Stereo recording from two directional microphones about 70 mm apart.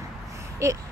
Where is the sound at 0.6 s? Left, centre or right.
Right.